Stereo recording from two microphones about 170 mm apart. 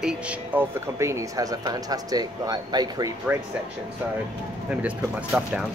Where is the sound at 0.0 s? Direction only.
10° right (ahead or behind).